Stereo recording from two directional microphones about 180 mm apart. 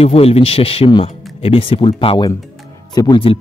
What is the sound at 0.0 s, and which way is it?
Speech, 35° left (ahead or behind).